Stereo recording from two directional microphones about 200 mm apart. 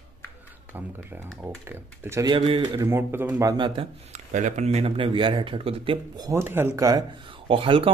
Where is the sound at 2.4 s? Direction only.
25° right (ahead or behind).